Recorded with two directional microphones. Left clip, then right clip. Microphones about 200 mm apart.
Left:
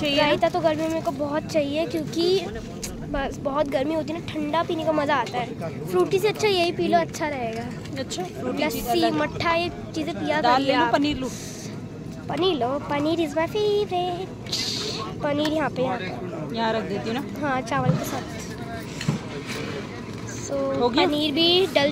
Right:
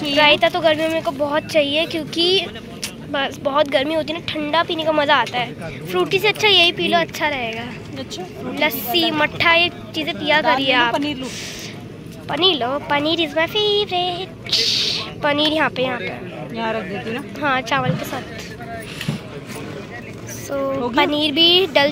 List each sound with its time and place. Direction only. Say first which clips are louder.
0.1 s speech: right 8 dB; centre (ahead or behind)
8.5 s speech: right 5 dB; centre (ahead or behind)
17.4 s speech: right 7 dB; centre (ahead or behind)
20.9 s speech: right 4 dB; centre (ahead or behind)